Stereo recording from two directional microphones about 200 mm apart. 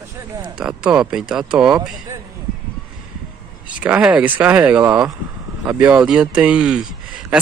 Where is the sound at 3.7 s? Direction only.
5° right (ahead or behind).